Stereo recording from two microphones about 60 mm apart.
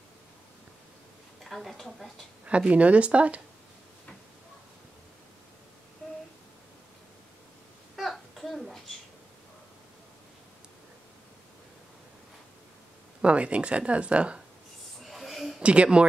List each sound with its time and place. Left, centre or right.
1.4 s a woman's voice: centre
2.4 s speech: right
7.9 s a sound: centre
13.2 s speech: centre
15.0 s a sound: centre
15.6 s speech: centre